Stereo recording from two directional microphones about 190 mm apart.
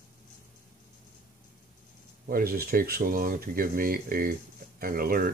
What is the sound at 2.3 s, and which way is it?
Speech, 50° right (ahead or behind).